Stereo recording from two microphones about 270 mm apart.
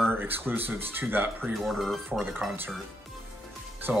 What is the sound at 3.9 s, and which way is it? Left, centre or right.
Speech, centre.